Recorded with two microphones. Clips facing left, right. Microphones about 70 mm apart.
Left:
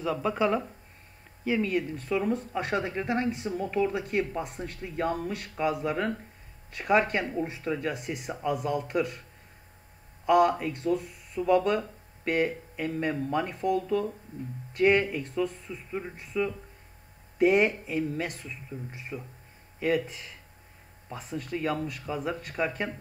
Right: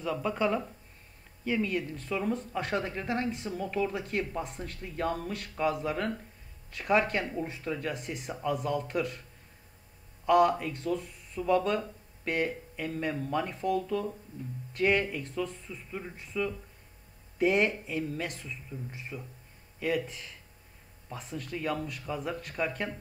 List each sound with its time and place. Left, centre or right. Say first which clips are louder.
0.0 s speech: left 3 dB; centre
10.2 s speech: left 1 dB; centre
15.9 s speech: left 5 dB; centre
17.4 s speech: left 4 dB; centre